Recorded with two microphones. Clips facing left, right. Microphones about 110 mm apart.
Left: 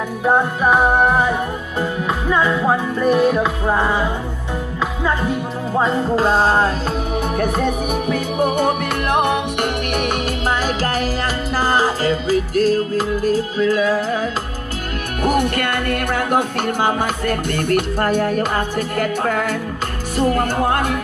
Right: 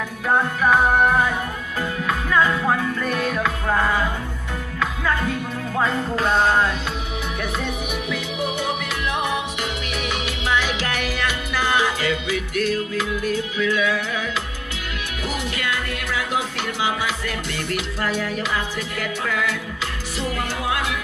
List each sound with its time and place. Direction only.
0.2 s music: 20° left (ahead or behind)
7.3 s music: 45° left (ahead or behind)
15.2 s music: 55° left (ahead or behind)